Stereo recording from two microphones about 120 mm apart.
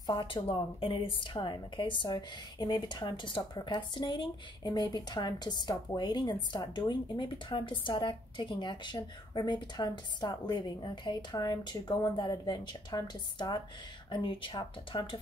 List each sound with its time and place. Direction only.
0.0 s a woman's voice: 35° left (ahead or behind)